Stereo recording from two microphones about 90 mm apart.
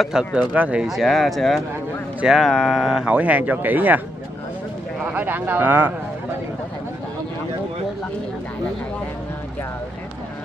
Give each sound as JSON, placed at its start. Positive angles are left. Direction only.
{"t": 0.0, "sound": "speech", "side_deg": -5}
{"t": 0.8, "sound": "speech", "side_deg": 0}
{"t": 3.1, "sound": "speech", "side_deg": -15}
{"t": 5.1, "sound": "speech", "side_deg": -20}